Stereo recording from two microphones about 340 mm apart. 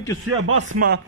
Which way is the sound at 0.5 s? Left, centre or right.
Right.